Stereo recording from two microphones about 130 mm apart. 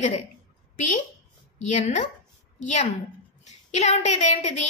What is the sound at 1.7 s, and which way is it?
A woman's voice, 70° left (ahead or behind).